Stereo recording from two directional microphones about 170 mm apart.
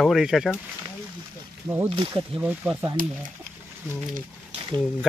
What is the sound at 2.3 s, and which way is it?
Speech, 10° right (ahead or behind).